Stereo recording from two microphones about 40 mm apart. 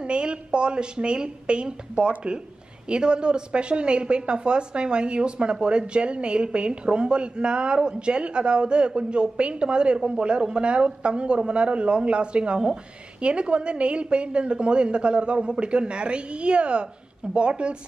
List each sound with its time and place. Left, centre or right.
0.0 s speech: right